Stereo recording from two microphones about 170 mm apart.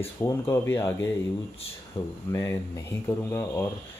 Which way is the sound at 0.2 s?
15° left (ahead or behind).